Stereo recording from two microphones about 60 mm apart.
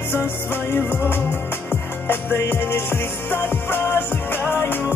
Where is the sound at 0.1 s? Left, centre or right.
Left.